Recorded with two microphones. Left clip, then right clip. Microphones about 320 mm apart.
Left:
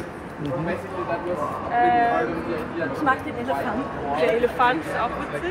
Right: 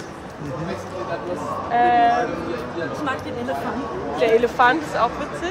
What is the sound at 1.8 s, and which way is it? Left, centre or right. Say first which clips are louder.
Speech: right 3 dB; right.